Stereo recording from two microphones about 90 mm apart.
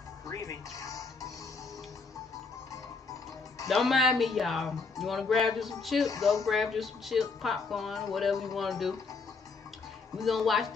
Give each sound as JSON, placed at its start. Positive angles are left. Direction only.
{"t": 0.3, "sound": "music", "side_deg": 40}
{"t": 3.6, "sound": "speech", "side_deg": 0}
{"t": 10.1, "sound": "speech", "side_deg": 0}